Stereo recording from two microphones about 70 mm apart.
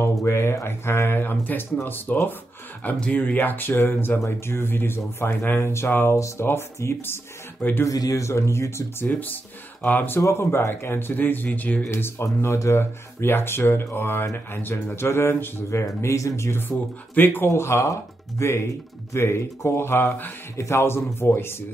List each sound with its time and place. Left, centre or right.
0.0 s speech: left
6.1 s speech: left
7.8 s speech: left
9.0 s speech: left
11.9 s speech: left
15.8 s speech: left
17.5 s speech: left
20.5 s speech: left